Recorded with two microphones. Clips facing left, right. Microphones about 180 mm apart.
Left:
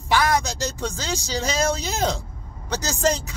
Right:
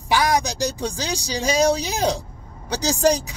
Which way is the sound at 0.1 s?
15° right (ahead or behind).